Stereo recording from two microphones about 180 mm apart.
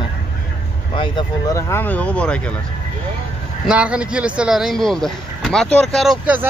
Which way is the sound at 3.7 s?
5° right (ahead or behind).